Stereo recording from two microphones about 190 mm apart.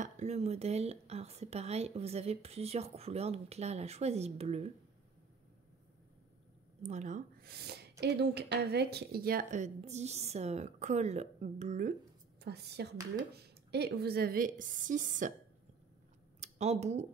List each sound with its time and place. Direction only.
0.0 s speech: 35° right (ahead or behind)
6.8 s speech: 40° right (ahead or behind)
12.4 s a woman's voice: 60° right (ahead or behind); by 15.3 s 45° right (ahead or behind)
16.3 s a sound: 35° right (ahead or behind)